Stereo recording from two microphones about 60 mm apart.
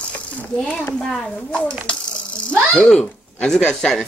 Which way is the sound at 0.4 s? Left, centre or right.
Left.